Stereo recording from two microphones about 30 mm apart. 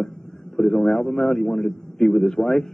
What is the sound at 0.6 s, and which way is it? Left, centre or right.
A man's voice, centre.